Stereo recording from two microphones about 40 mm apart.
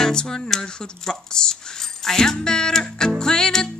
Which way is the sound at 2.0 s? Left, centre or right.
Centre.